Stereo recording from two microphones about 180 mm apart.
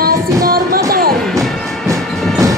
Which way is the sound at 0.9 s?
55° right (ahead or behind).